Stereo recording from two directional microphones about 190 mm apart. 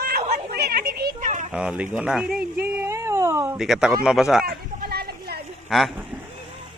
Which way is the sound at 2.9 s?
15° right (ahead or behind).